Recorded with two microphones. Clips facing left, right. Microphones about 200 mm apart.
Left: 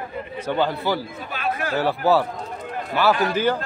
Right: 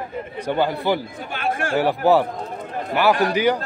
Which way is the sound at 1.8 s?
15° right (ahead or behind).